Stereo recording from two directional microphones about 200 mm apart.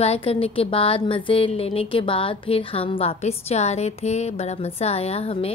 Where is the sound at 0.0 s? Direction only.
30° left (ahead or behind).